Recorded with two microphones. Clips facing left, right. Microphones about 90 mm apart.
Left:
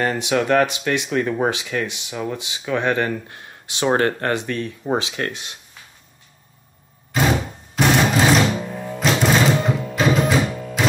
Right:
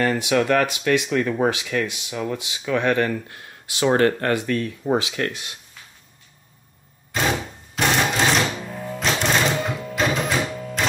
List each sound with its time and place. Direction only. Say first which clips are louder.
0.0 s speech: even; 25° left (ahead or behind)
7.1 s a sound: left 3 dB; centre (ahead or behind)
7.7 s music: left 4 dB; centre (ahead or behind)